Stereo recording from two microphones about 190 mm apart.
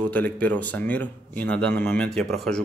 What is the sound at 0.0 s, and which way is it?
Speech, 10° left (ahead or behind).